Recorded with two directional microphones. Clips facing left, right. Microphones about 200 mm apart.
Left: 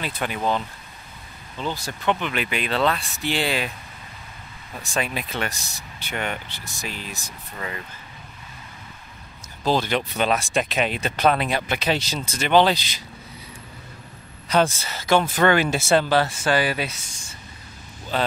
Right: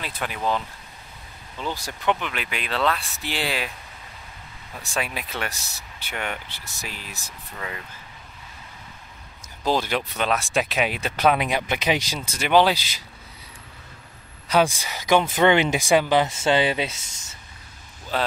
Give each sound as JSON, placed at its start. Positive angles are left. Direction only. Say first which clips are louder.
{"t": 0.0, "sound": "speech", "louder": "left 2 dB", "side_deg": 0}
{"t": 1.6, "sound": "speech", "louder": "left 2 dB", "side_deg": -10}
{"t": 4.9, "sound": "speech", "louder": "left 2 dB", "side_deg": -5}
{"t": 9.7, "sound": "speech", "louder": "left 1 dB", "side_deg": -10}
{"t": 14.5, "sound": "speech", "louder": "even", "side_deg": -10}
{"t": 18.1, "sound": "speech", "louder": "left 1 dB", "side_deg": -5}